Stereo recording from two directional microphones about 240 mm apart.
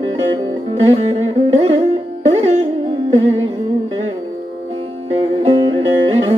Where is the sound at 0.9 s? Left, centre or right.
Right.